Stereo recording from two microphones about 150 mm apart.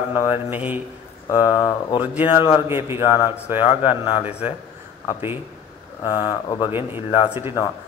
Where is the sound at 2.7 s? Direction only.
15° right (ahead or behind).